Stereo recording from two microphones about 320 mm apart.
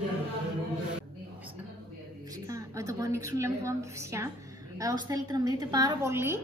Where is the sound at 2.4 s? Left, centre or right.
Centre.